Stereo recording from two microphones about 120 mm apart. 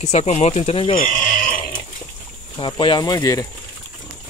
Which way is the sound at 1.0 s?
90° left.